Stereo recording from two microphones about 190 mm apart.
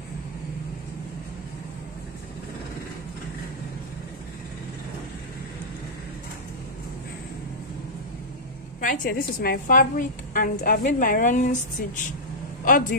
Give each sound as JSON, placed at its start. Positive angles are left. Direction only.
{"t": 8.8, "sound": "a woman's voice", "side_deg": 45}
{"t": 12.6, "sound": "speech", "side_deg": 45}